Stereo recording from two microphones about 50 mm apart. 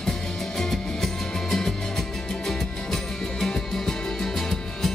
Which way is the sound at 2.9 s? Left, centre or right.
Centre.